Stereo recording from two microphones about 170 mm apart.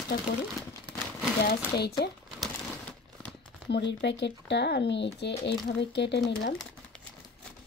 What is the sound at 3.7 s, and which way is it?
Speech, 90° left.